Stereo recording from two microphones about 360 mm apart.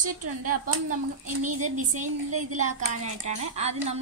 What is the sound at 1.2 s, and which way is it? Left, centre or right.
Speech, right.